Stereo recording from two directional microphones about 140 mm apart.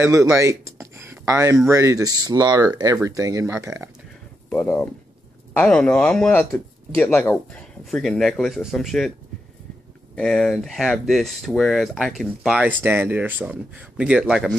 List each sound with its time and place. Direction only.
0.0 s speech: 20° right (ahead or behind)
4.5 s speech: 10° left (ahead or behind)
6.5 s speech: 20° left (ahead or behind); by 9.1 s centre (ahead or behind)
10.1 s speech: 5° left (ahead or behind)